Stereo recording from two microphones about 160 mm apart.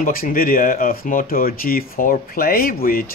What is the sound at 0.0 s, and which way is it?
Speech, 60° left (ahead or behind).